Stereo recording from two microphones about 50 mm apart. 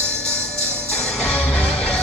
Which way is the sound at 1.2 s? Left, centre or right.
Centre.